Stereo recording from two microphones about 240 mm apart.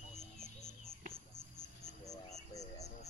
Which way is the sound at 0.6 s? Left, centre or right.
Centre.